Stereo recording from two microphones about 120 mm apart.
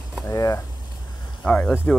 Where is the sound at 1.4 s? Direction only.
15° left (ahead or behind).